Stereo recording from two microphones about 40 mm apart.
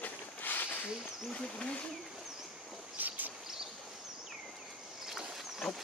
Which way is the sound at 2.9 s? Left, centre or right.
Right.